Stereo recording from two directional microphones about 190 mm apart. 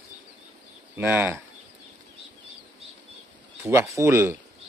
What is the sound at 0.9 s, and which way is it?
Speech, 10° right (ahead or behind).